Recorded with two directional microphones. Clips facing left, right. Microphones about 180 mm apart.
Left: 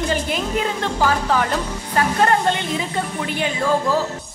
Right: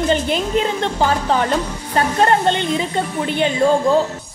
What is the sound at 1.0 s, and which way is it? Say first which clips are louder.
Speech: right 1 dB; 25° right (ahead or behind).